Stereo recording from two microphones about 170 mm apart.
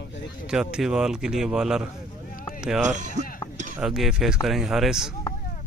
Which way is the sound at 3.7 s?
Centre (ahead or behind).